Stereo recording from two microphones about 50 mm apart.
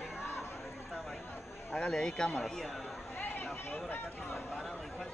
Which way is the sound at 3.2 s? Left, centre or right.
Left.